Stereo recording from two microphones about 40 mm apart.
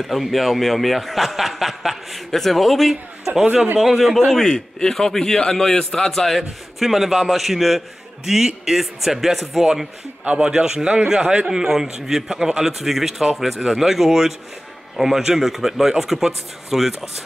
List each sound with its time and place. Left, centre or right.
0.0 s a man's voice: centre
10.2 s a man's voice: right
11.5 s a man's voice: centre